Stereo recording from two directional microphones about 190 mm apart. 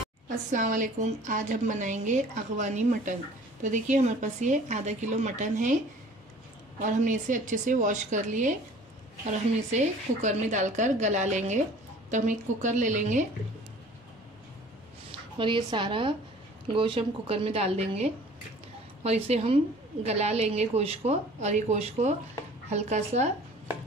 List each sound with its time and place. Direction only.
0.5 s a woman's voice: 40° right (ahead or behind)
6.8 s a woman's voice: 45° right (ahead or behind)
15.0 s a woman's voice: 25° right (ahead or behind)